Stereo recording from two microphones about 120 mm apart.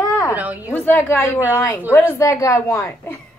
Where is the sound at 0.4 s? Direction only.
15° right (ahead or behind).